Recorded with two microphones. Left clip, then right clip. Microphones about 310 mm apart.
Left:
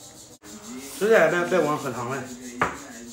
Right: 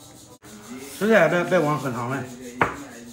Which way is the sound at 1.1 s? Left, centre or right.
Right.